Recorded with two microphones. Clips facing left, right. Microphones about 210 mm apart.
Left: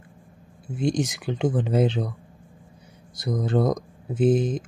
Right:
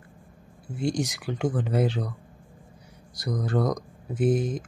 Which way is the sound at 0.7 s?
20° left (ahead or behind).